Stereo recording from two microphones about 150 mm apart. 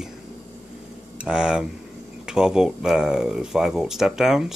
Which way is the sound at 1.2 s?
5° right (ahead or behind).